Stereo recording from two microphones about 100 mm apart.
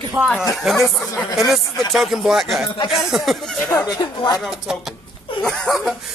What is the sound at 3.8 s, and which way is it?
Speech, 40° left (ahead or behind).